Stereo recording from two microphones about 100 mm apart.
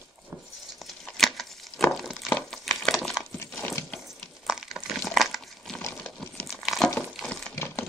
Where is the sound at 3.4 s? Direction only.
25° left (ahead or behind).